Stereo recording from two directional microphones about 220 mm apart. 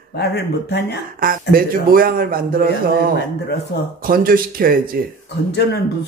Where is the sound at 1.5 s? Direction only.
40° right (ahead or behind).